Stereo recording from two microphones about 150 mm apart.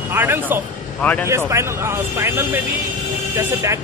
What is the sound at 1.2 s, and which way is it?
Speech, 20° right (ahead or behind).